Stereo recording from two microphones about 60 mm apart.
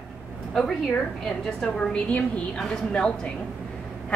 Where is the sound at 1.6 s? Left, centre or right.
Centre.